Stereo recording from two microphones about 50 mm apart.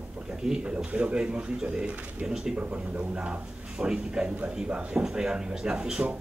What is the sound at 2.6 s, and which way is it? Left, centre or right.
A man's voice, right.